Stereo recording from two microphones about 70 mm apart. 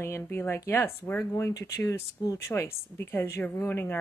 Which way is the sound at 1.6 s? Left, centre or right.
Left.